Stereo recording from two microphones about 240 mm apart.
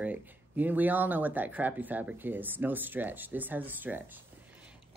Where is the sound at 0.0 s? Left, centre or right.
Centre.